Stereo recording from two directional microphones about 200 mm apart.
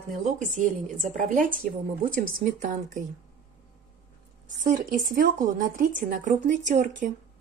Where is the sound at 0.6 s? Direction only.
40° right (ahead or behind).